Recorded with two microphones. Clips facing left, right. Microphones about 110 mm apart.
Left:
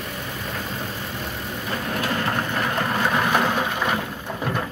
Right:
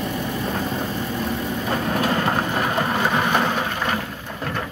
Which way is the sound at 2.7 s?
5° right (ahead or behind).